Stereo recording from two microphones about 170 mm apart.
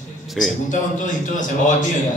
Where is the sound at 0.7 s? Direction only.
50° left (ahead or behind).